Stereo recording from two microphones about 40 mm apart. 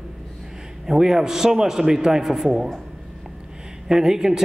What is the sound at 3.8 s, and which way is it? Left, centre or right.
Speech, centre.